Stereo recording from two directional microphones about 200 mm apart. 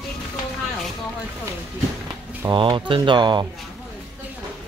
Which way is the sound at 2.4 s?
25° right (ahead or behind).